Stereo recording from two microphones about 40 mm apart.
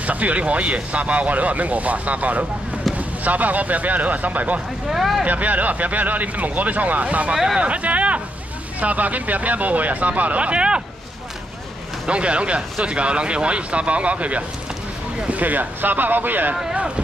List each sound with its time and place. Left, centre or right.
0.0 s speech: right
4.8 s speech: centre
5.2 s speech: right
12.1 s speech: right